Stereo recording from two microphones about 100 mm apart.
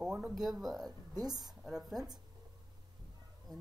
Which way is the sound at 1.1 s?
40° right (ahead or behind).